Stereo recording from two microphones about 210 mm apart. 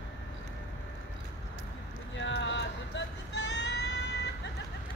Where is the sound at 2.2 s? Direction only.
60° left (ahead or behind).